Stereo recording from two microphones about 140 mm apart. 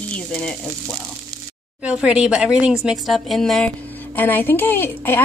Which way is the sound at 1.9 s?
5° right (ahead or behind).